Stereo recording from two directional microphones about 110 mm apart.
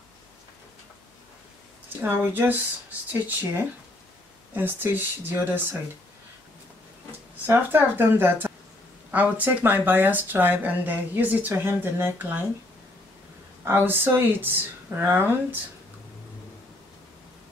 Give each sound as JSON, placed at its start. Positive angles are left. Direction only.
{"t": 2.0, "sound": "speech", "side_deg": -15}
{"t": 7.1, "sound": "speech", "side_deg": -20}
{"t": 13.7, "sound": "speech", "side_deg": -20}